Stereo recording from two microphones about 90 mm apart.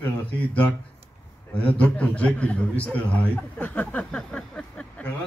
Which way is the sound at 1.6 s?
15° left (ahead or behind).